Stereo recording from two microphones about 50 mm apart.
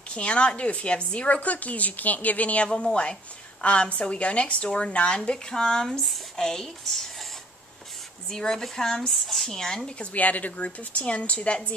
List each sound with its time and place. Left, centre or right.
0.1 s a woman's voice: left
8.3 s speech: centre
9.9 s a woman's voice: left